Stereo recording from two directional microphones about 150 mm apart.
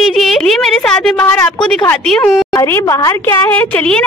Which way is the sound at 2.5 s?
20° left (ahead or behind).